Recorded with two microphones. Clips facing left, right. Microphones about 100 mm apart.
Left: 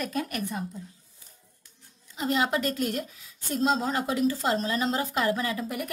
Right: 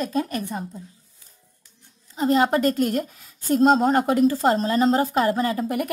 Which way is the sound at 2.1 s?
40° right (ahead or behind).